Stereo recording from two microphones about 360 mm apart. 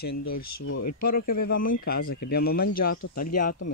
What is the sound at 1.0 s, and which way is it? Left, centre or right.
Speech, left.